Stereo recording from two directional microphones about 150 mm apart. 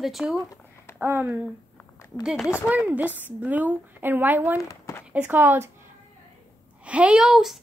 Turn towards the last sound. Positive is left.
turn(degrees=0)  # may be behind; listen again after turning